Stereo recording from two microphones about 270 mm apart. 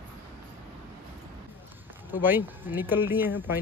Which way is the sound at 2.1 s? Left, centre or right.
Centre.